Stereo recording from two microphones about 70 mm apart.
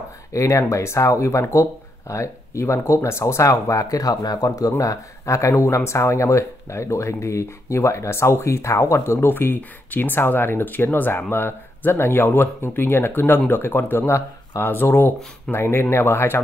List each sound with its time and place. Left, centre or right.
0.3 s speech: left